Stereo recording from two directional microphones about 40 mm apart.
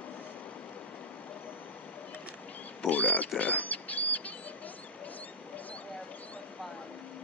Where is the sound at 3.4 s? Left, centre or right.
Left.